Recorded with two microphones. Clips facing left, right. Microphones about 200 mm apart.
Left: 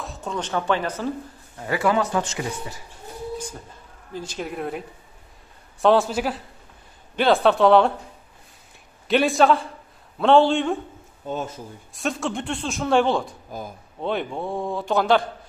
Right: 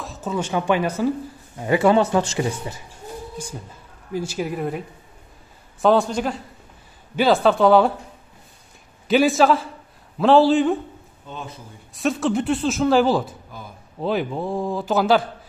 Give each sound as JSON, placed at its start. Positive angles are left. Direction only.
{"t": 0.0, "sound": "speech", "side_deg": 0}
{"t": 1.6, "sound": "speech", "side_deg": -25}
{"t": 4.1, "sound": "speech", "side_deg": -10}
{"t": 9.0, "sound": "speech", "side_deg": 0}
{"t": 11.2, "sound": "speech", "side_deg": 45}
{"t": 11.9, "sound": "speech", "side_deg": 0}